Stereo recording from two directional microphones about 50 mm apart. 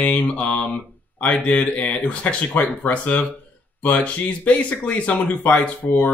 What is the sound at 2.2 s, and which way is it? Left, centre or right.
Speech, left.